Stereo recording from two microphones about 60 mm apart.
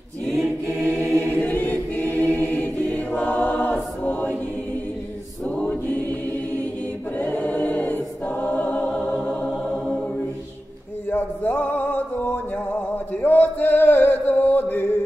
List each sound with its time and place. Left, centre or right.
0.3 s choir: centre
1.1 s choir: left
7.2 s choir: left
8.8 s music: centre
11.1 s music: left